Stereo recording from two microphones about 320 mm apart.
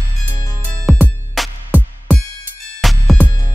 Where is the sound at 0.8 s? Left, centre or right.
Centre.